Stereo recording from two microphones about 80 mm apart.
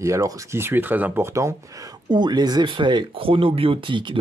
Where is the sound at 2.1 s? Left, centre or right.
Right.